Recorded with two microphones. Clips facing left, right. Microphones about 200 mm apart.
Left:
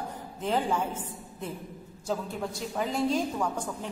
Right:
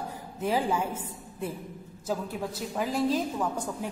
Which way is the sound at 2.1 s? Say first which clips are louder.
Even; 5° right (ahead or behind).